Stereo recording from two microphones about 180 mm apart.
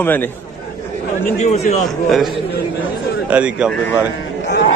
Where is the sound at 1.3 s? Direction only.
40° left (ahead or behind).